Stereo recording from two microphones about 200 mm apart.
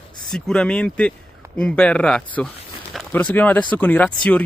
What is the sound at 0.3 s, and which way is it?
Speech, 5° left (ahead or behind).